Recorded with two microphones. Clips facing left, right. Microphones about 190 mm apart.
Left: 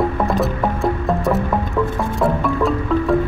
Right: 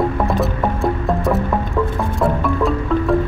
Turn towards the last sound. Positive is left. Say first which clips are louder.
# even
turn(degrees=0)  # may be behind; listen again after turning